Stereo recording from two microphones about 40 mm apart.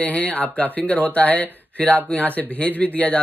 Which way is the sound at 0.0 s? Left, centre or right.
Left.